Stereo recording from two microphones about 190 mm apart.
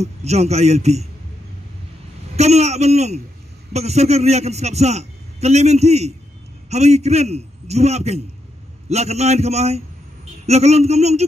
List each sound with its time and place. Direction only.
0.0 s a man's voice: 35° right (ahead or behind)
2.3 s a man's voice: 35° right (ahead or behind)